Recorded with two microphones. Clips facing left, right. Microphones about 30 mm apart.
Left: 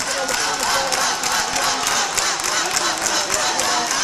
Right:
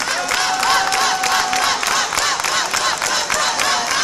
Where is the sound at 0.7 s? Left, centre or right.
Right.